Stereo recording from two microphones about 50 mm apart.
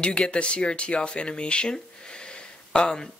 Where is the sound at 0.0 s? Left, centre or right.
Centre.